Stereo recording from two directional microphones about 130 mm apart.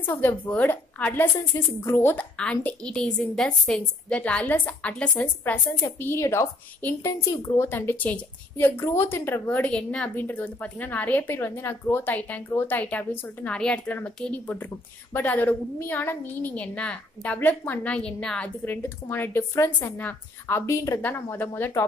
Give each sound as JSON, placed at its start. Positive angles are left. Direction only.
{"t": 0.0, "sound": "a woman's voice", "side_deg": 15}
{"t": 18.7, "sound": "a woman's voice", "side_deg": 15}